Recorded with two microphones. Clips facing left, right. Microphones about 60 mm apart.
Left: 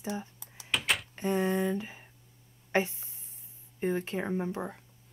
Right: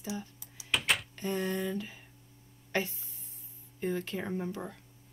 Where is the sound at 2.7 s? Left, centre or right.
Left.